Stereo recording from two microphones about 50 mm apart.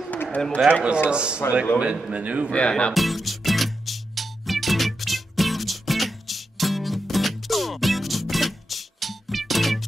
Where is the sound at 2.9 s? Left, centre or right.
Centre.